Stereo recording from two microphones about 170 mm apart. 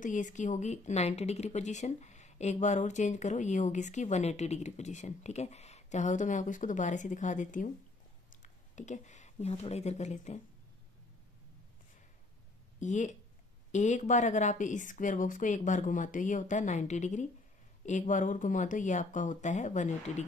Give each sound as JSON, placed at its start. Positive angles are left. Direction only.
{"t": 0.0, "sound": "speech", "side_deg": 45}
{"t": 12.8, "sound": "speech", "side_deg": 45}